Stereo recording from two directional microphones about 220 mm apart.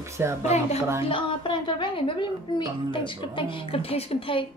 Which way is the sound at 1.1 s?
20° left (ahead or behind).